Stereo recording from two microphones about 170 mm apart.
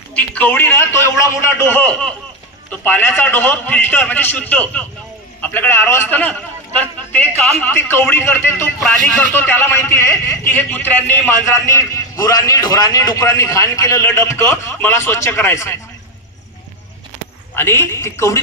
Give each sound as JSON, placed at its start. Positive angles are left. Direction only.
{"t": 0.1, "sound": "a man's voice", "side_deg": 10}
{"t": 17.6, "sound": "a man's voice", "side_deg": 15}